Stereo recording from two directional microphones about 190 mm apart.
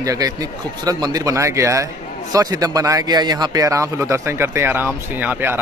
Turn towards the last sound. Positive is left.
turn(degrees=-10)  # may be behind; listen again after turning